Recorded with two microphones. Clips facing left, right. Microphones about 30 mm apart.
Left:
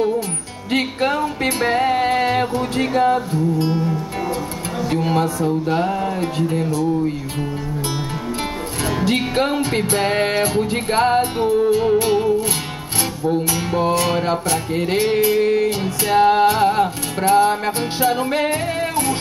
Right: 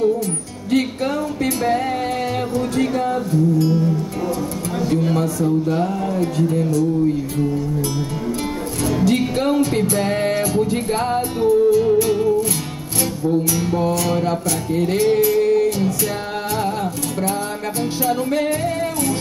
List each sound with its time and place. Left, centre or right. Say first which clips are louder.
0.7 s music: even; left
8.8 s music: right 2 dB; left